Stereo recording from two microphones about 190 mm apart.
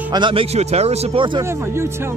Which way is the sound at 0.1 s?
25° right (ahead or behind).